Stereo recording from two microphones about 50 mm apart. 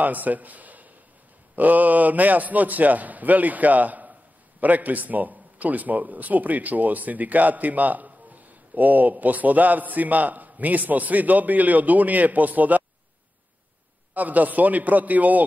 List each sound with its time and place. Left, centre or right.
0.0 s a man's voice: right
14.1 s a man's voice: right